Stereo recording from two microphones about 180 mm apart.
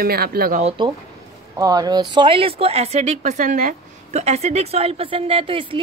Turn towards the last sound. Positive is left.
turn(degrees=-30)  # may be behind; listen again after turning